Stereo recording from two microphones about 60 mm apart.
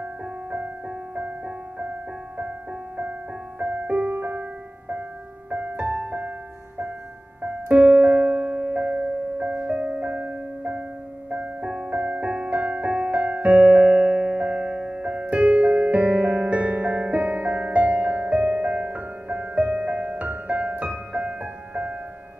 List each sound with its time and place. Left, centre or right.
0.0 s music: centre
3.0 s music: right
7.4 s music: right